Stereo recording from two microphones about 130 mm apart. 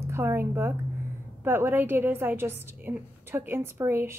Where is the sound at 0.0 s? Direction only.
20° right (ahead or behind).